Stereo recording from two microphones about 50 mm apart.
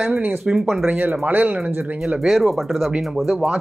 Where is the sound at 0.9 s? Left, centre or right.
Right.